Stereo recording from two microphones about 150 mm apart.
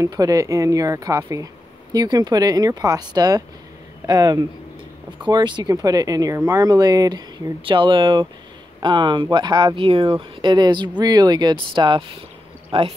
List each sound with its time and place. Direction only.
0.0 s speech: 25° right (ahead or behind); by 12.9 s 40° right (ahead or behind)